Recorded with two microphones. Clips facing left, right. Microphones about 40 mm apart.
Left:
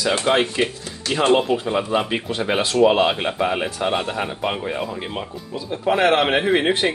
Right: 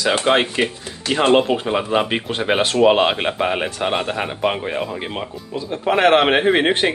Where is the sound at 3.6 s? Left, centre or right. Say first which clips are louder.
Right 1 dB; right.